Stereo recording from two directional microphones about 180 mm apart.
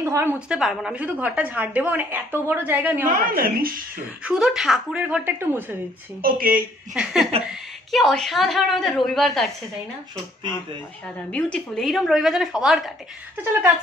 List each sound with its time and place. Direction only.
0.0 s a woman's voice: 15° right (ahead or behind)
0.6 s a woman's voice: centre (ahead or behind)
3.3 s speech: 55° right (ahead or behind)
4.2 s a woman's voice: 5° right (ahead or behind)
6.2 s speech: 55° right (ahead or behind)
6.9 s a woman's voice: centre (ahead or behind)
11.3 s a woman's voice: 5° left (ahead or behind)
13.4 s a woman's voice: 10° right (ahead or behind)